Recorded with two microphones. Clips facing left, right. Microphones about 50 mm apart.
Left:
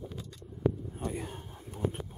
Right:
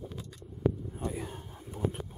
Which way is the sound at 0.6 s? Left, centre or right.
Centre.